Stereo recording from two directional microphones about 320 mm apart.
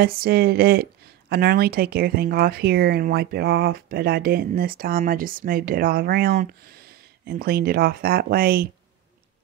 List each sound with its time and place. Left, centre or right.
0.0 s speech: right